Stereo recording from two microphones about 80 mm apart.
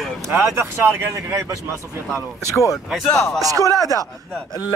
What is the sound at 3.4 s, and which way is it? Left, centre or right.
Speech, right.